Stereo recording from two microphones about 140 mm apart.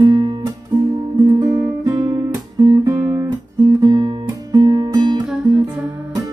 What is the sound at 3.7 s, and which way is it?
Music, 30° right (ahead or behind).